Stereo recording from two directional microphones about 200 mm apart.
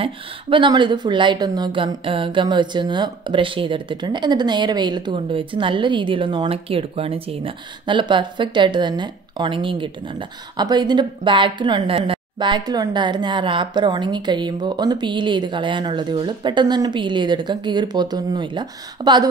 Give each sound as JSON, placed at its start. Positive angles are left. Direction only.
{"t": 0.0, "sound": "a woman's voice", "side_deg": -25}